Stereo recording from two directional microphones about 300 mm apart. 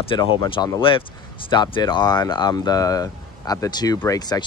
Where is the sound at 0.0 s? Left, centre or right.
Centre.